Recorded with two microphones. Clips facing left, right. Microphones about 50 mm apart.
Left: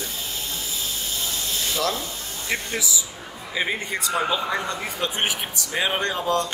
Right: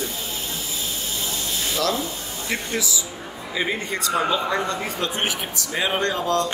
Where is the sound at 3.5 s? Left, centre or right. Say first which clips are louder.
Right 1 dB; centre.